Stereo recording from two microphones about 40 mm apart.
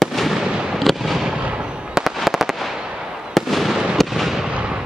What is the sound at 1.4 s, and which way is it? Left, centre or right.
Fireworks, right.